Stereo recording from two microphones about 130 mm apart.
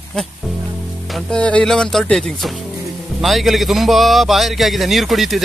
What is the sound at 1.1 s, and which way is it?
A man's voice, 5° left (ahead or behind).